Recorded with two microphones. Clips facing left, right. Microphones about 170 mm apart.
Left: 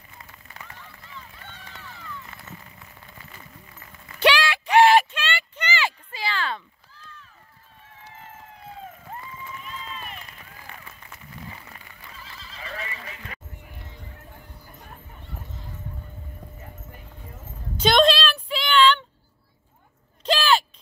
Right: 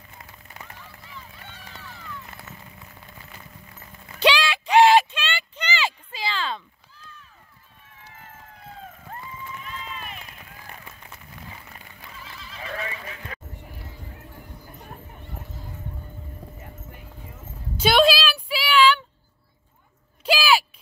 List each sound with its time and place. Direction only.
1.1 s run: 5° right (ahead or behind)
4.2 s a sound: 15° right (ahead or behind)
8.1 s emergency vehicle: 25° left (ahead or behind)
9.8 s run: 5° right (ahead or behind)
12.4 s neigh: 35° left (ahead or behind)
16.4 s clip-clop: 5° right (ahead or behind)
17.7 s music: 10° right (ahead or behind)
20.2 s a sound: 10° right (ahead or behind)